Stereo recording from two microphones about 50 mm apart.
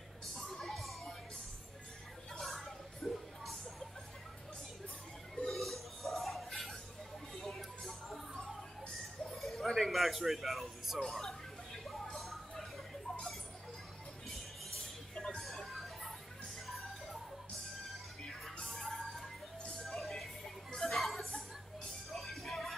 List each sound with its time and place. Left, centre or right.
0.6 s music: centre
2.3 s music: centre
5.3 s music: centre
8.8 s a sound: centre
9.4 s music: centre
11.0 s a sound: centre
14.7 s music: centre
18.4 s music: centre